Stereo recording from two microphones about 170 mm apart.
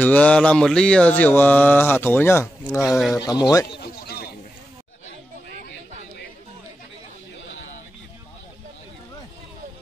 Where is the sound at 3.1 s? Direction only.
25° left (ahead or behind).